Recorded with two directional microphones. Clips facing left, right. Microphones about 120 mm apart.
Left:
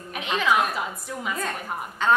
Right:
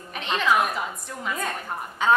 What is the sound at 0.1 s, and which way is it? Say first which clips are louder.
A woman's voice: even; 5° left (ahead or behind).